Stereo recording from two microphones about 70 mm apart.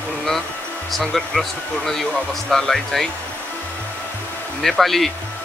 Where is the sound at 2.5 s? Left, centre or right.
Centre.